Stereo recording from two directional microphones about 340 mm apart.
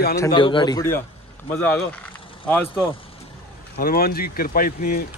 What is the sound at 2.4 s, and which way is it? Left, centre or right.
Speech, centre.